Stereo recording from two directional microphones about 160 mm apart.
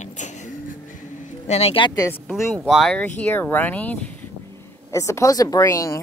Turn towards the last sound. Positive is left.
turn(degrees=20)  # may be behind; listen again after turning